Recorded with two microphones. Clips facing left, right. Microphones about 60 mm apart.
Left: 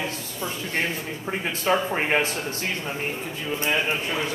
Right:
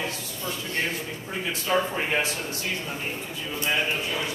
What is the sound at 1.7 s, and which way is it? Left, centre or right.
Speech, left.